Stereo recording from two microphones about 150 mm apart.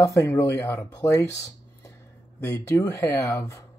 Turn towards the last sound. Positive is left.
turn(degrees=20)  # may be behind; listen again after turning